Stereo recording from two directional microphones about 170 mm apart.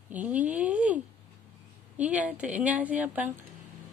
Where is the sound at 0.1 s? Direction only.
10° right (ahead or behind).